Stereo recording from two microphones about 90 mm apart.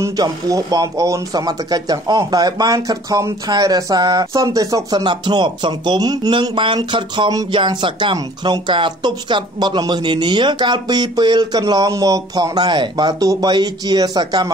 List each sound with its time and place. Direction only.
0.2 s speech: 40° right (ahead or behind)
5.0 s speech: 60° right (ahead or behind)
6.4 s speech: 65° right (ahead or behind)